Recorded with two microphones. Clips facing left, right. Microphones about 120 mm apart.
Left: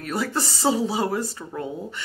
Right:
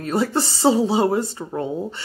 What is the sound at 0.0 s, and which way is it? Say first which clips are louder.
Speech: right 5 dB; 30° right (ahead or behind).